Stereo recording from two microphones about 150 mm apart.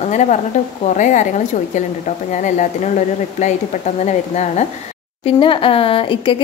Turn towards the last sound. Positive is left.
turn(degrees=35)  # may be behind; listen again after turning